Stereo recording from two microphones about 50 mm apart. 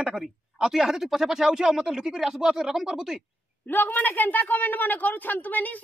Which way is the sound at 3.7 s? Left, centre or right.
Left.